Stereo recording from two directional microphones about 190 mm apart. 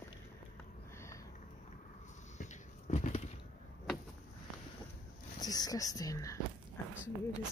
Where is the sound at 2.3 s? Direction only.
40° left (ahead or behind).